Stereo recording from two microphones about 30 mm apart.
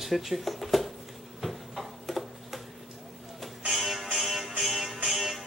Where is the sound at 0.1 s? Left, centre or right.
Centre.